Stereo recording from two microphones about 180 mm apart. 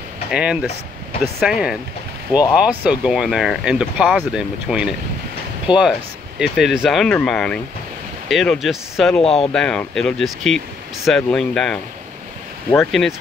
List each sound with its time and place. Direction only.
0.3 s speech: 5° right (ahead or behind)
5.7 s speech: 25° left (ahead or behind)
6.4 s speech: centre (ahead or behind)
9.2 s speech: 35° left (ahead or behind)
9.5 s speech: 5° left (ahead or behind)